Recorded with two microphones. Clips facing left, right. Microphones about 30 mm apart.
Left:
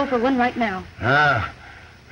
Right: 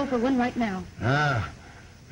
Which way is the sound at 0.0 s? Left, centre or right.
Left.